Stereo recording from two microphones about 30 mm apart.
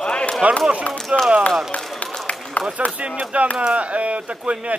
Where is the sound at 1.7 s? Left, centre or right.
Left.